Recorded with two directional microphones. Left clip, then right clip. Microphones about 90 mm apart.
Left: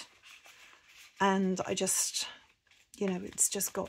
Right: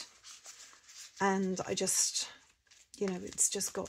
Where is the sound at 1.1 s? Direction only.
25° left (ahead or behind).